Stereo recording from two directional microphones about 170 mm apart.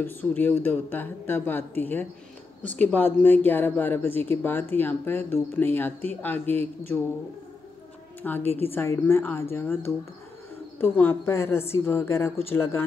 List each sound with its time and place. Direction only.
0.0 s speech: 10° left (ahead or behind)
2.6 s speech: 45° right (ahead or behind)
2.9 s speech: 10° left (ahead or behind)
8.2 s speech: 10° left (ahead or behind)